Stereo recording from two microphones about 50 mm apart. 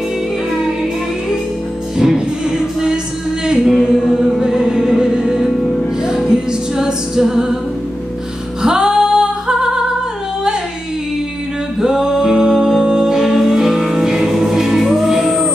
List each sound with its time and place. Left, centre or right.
2.0 s music: centre
8.6 s music: centre
11.8 s music: centre